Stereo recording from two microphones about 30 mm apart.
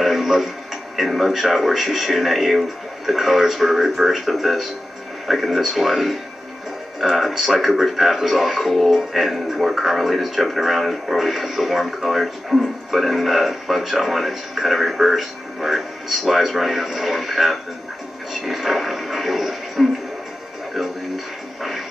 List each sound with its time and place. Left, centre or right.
0.0 s television: centre
0.9 s speech: centre
11.1 s speech: centre